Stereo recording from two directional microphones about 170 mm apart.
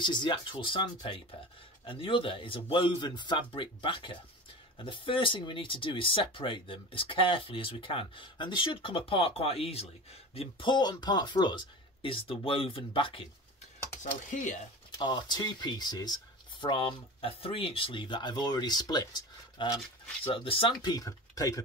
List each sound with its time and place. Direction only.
0.0 s speech: 25° left (ahead or behind)
14.3 s speech: 45° left (ahead or behind)
14.9 s speech: 25° left (ahead or behind)